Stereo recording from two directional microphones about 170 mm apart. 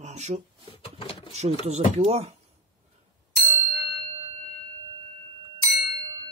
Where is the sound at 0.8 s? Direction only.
35° left (ahead or behind).